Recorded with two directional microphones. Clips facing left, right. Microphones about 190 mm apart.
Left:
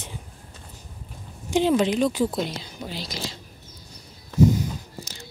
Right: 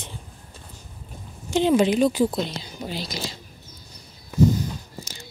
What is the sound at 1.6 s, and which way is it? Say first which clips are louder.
Speech: right 3 dB; 5° right (ahead or behind).